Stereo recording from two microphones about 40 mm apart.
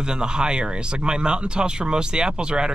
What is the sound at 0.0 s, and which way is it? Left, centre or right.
A man's voice, right.